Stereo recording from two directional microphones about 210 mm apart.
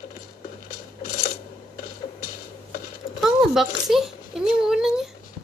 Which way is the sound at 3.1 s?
Centre (ahead or behind).